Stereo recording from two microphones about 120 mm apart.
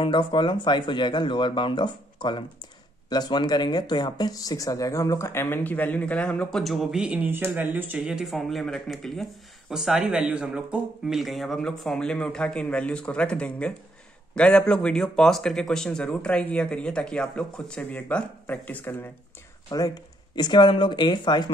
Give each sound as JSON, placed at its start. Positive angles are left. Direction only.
{"t": 0.0, "sound": "speech", "side_deg": 45}
{"t": 6.6, "sound": "speech", "side_deg": 0}
{"t": 8.0, "sound": "speech", "side_deg": -5}
{"t": 19.7, "sound": "speech", "side_deg": 35}